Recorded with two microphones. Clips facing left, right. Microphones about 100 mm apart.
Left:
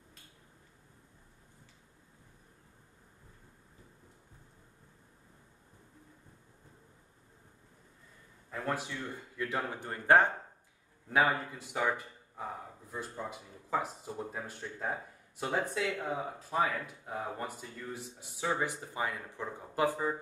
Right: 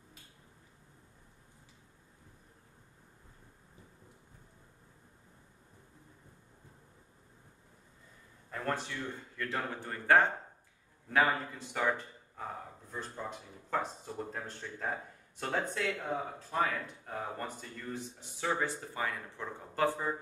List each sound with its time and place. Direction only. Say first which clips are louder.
8.5 s a man's voice: even; 5° left (ahead or behind)
12.9 s speech: left 1 dB; 5° left (ahead or behind)